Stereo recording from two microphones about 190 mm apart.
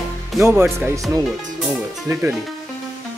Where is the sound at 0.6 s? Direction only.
Centre (ahead or behind).